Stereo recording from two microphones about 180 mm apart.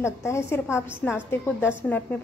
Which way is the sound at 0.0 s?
15° left (ahead or behind).